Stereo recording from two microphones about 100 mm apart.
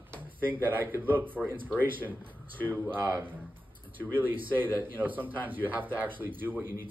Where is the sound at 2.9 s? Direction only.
25° right (ahead or behind).